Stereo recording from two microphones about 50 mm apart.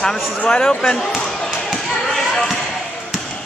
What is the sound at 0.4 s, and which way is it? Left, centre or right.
Speech, centre.